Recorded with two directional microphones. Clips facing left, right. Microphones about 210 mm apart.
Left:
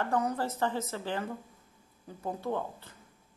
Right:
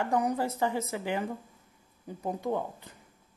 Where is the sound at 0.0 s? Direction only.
15° right (ahead or behind).